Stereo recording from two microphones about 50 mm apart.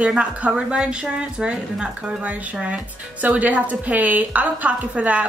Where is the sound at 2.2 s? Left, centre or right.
Right.